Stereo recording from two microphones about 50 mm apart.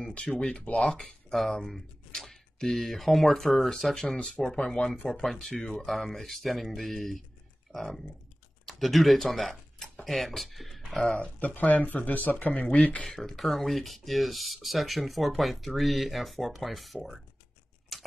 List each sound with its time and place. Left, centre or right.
0.1 s speech: left; by 7.2 s centre
7.7 s speech: right
8.6 s speech: centre
11.1 s speech: left
12.7 s speech: centre
13.0 s speech: centre
17.9 s scissors: centre